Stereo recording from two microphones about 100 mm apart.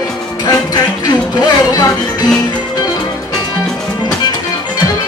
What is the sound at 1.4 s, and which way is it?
Speech, 40° left (ahead or behind).